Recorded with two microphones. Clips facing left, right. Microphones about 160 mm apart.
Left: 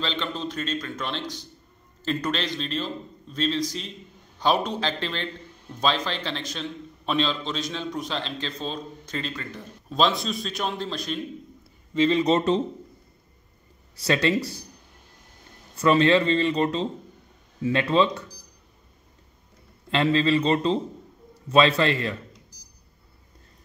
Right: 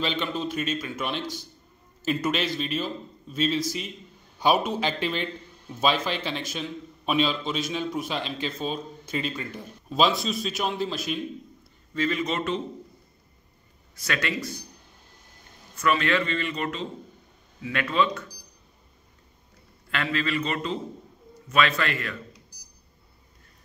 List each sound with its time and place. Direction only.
0.0 s a man's voice: 10° right (ahead or behind)
11.9 s speech: 25° left (ahead or behind)
13.9 s speech: 30° left (ahead or behind)
15.7 s speech: 30° left (ahead or behind)
19.9 s a man's voice: 25° left (ahead or behind)